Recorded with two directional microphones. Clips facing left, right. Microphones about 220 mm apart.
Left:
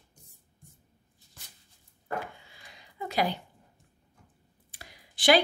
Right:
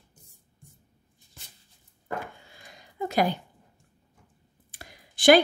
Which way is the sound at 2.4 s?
45° right (ahead or behind).